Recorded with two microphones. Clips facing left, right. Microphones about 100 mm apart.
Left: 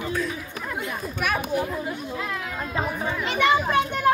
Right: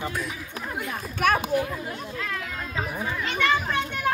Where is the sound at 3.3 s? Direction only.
10° left (ahead or behind).